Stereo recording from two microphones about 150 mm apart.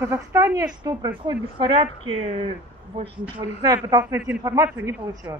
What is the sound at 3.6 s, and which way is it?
Speech, 25° right (ahead or behind).